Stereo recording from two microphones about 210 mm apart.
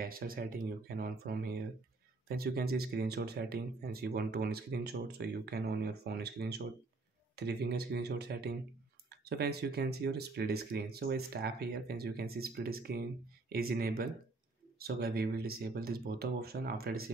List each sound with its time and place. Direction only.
0.0 s speech: 45° right (ahead or behind)